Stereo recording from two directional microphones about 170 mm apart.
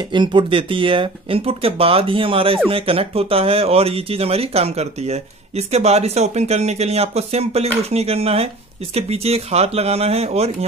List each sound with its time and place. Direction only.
0.1 s speech: 30° right (ahead or behind)